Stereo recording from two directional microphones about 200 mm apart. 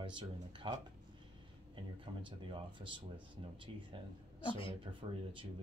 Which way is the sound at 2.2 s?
25° right (ahead or behind).